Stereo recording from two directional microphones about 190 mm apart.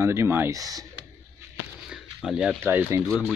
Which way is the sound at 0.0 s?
15° right (ahead or behind).